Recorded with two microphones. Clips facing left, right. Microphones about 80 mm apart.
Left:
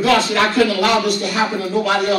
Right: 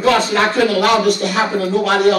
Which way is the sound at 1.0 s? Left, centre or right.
Right.